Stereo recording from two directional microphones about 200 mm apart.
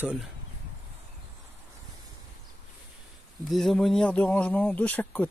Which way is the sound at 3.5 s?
Centre (ahead or behind).